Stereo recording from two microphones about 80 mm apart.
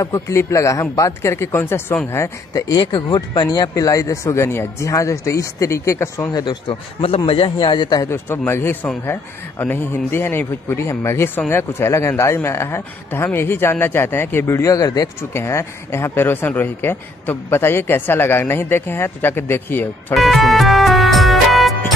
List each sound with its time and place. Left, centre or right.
0.0 s speech: left
2.7 s a man's voice: left
3.4 s speech: left
6.3 s a man's voice: left
8.1 s speech: left
15.3 s speech: left
20.2 s music: centre